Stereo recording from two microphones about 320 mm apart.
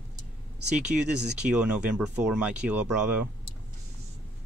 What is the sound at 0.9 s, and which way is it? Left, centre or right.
Speech, right.